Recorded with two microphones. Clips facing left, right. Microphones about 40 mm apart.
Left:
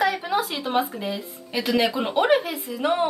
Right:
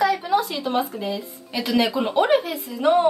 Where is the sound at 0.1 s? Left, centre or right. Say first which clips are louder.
Right 4 dB; centre.